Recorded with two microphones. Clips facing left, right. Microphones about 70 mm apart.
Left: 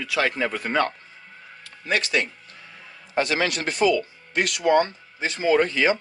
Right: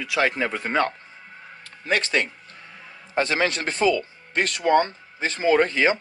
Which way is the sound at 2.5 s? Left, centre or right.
Right.